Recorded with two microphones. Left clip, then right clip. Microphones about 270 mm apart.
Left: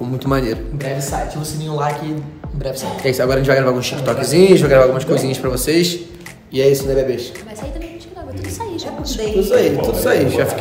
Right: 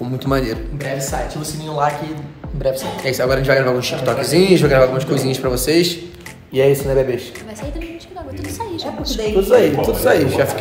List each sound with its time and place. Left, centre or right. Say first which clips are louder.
0.0 s a man's voice: left 1 dB; centre
0.8 s speech: even; left
1.4 s speech: right 2 dB; centre
3.1 s a man's voice: left 1 dB; centre
6.5 s speech: even; centre
8.5 s music: even; centre
9.4 s speech: right 2 dB; centre
9.8 s speech: right 1 dB; centre